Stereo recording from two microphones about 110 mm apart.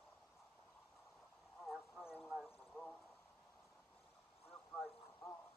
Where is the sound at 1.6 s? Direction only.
5° right (ahead or behind).